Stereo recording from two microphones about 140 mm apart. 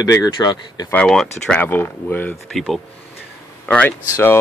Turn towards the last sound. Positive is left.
turn(degrees=10)  # may be behind; listen again after turning